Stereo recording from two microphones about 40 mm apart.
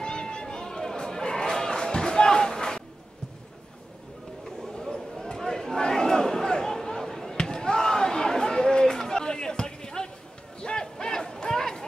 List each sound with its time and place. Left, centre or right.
0.0 s chatter: left
4.6 s a sound: centre
10.6 s crowd: centre